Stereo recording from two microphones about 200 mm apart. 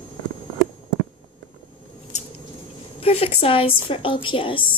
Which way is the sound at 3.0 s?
30° left (ahead or behind).